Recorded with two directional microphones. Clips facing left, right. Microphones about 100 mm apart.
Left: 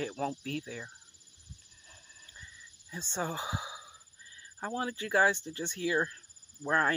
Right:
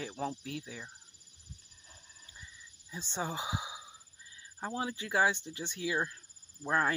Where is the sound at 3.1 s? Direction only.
15° right (ahead or behind).